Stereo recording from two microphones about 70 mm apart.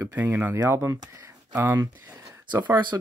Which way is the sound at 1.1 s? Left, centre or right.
Right.